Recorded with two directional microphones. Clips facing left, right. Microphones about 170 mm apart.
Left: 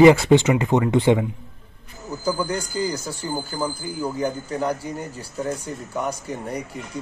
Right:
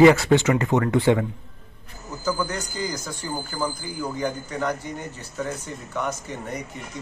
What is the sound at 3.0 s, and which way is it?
Speech, 30° left (ahead or behind).